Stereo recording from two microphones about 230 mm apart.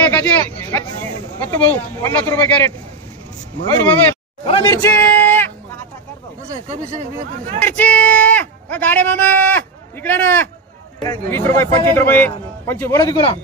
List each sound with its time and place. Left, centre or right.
0.0 s speech: centre
4.5 s speech: left
4.8 s a sound: centre
7.6 s speech: centre